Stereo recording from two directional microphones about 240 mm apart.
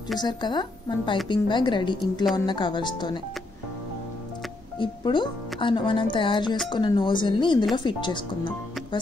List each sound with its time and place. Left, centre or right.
0.2 s speech: centre
4.7 s speech: centre